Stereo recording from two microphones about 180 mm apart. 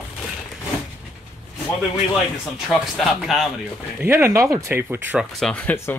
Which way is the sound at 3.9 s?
10° right (ahead or behind).